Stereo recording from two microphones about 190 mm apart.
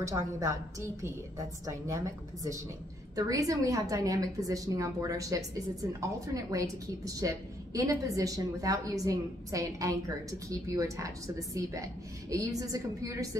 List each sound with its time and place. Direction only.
0.0 s a woman's voice: 15° right (ahead or behind)